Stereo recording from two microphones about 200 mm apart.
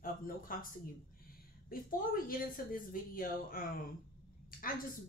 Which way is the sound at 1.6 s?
45° left (ahead or behind).